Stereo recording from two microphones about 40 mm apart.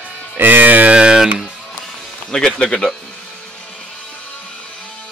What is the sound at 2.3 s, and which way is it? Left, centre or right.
Speech, centre.